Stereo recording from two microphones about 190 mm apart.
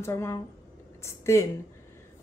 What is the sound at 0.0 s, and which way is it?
Speech, 15° left (ahead or behind).